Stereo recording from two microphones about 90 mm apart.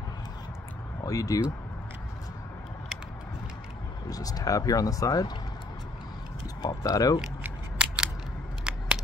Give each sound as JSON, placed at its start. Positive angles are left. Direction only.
{"t": 1.0, "sound": "speech", "side_deg": 40}
{"t": 4.1, "sound": "speech", "side_deg": 40}
{"t": 6.6, "sound": "speech", "side_deg": 40}
{"t": 7.4, "sound": "scissors", "side_deg": -10}